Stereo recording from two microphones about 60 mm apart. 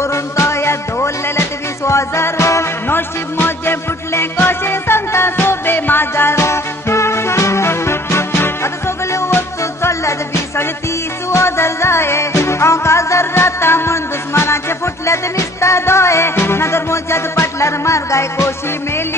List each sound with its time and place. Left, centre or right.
0.0 s music: left
2.9 s music: left
11.2 s music: left